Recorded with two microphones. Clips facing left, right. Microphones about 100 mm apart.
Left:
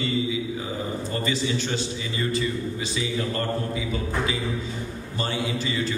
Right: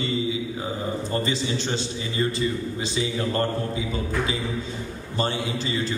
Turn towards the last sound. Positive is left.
turn(degrees=-30)  # may be behind; listen again after turning